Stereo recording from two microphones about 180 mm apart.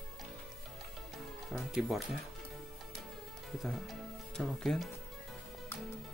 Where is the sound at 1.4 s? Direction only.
Centre (ahead or behind).